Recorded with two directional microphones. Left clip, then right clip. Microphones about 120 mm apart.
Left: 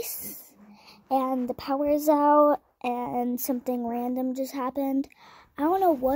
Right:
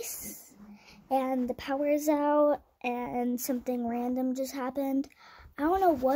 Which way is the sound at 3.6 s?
55° left (ahead or behind).